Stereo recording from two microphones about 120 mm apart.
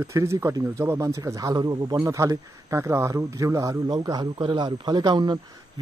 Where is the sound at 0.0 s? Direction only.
25° right (ahead or behind).